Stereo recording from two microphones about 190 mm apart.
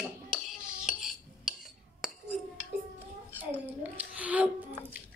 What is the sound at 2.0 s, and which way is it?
Chink, centre (ahead or behind).